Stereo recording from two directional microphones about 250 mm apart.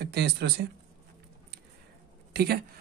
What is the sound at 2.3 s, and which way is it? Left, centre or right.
Speech, right.